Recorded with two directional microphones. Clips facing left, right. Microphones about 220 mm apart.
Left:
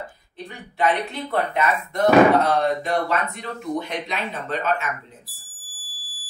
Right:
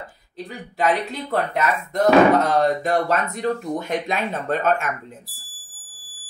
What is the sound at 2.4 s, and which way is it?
Speech, 45° right (ahead or behind).